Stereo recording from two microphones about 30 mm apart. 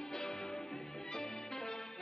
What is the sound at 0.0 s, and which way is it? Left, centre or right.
Music, centre.